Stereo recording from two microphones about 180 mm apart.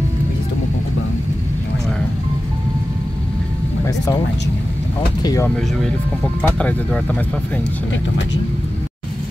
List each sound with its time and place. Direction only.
3.8 s music: 20° left (ahead or behind)
5.2 s speech: 20° left (ahead or behind)
5.6 s speech: 5° left (ahead or behind)